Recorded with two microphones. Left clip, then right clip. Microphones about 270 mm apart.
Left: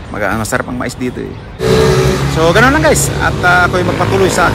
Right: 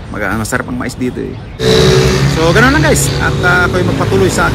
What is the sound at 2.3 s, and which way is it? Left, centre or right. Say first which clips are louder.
Speech: left 1 dB; centre.